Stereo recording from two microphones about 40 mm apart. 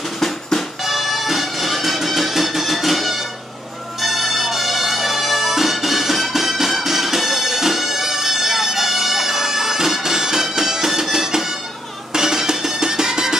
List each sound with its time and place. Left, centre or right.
0.2 s music: centre
0.8 s music: centre
4.0 s bagpipes: centre
12.1 s music: centre